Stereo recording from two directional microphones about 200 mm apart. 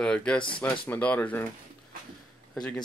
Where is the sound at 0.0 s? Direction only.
5° left (ahead or behind).